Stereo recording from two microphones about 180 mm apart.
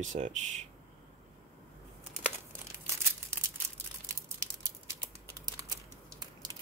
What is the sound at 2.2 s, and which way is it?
Crumpling, 15° right (ahead or behind).